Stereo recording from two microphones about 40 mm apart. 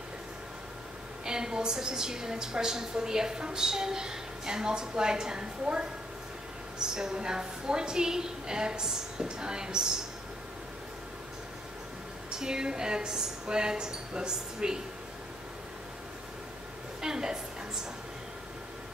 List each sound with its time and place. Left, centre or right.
1.2 s a woman's voice: centre
12.3 s a woman's voice: centre
17.0 s a woman's voice: centre